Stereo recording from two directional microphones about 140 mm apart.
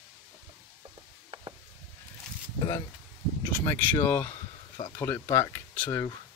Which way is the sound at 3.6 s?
15° left (ahead or behind).